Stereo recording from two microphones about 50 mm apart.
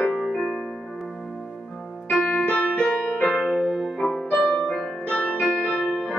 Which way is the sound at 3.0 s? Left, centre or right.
Left.